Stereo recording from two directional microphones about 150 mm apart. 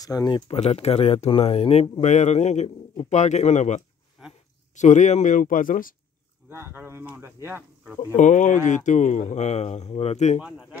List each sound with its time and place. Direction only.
0.0 s speech: 25° left (ahead or behind)
0.6 s speech: 45° left (ahead or behind); by 5.9 s 65° left (ahead or behind)
6.5 s speech: 15° right (ahead or behind)
8.2 s speech: 55° left (ahead or behind)